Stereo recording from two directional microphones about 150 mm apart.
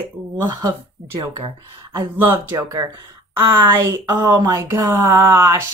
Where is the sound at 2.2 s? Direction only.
15° right (ahead or behind).